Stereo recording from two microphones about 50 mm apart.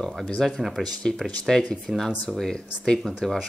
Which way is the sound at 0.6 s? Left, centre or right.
Centre.